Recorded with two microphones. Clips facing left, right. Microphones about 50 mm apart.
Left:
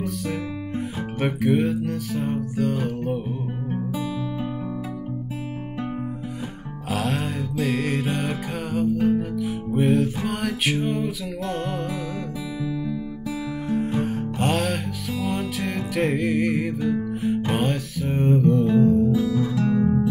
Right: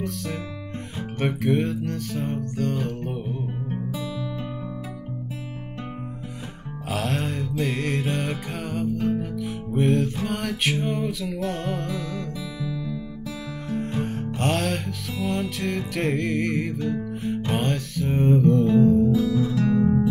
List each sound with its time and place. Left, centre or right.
1.2 s music: centre
6.9 s music: centre
13.7 s music: centre